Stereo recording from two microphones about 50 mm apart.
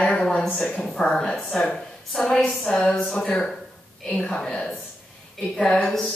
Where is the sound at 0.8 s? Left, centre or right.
Centre.